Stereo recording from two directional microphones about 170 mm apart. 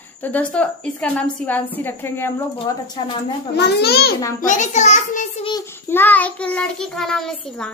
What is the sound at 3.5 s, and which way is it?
Speech, 75° left (ahead or behind).